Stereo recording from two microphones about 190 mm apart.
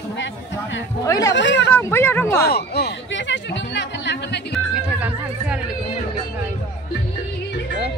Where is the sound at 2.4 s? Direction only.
60° left (ahead or behind).